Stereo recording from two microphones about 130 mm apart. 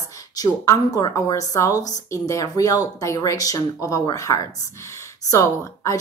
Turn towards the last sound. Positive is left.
turn(degrees=25)  # may be behind; listen again after turning